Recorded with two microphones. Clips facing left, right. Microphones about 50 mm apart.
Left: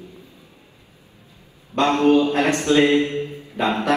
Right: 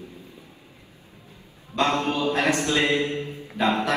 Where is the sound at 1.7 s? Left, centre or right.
Left.